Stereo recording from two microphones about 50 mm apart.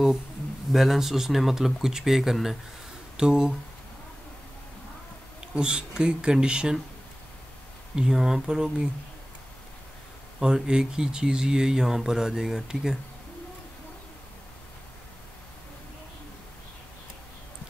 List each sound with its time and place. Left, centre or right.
0.7 s speech: centre
5.5 s speech: centre
7.9 s speech: centre
10.4 s speech: centre